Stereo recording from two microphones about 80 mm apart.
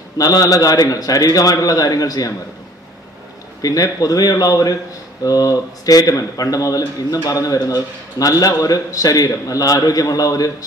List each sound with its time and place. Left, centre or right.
0.2 s speech: left
3.6 s speech: left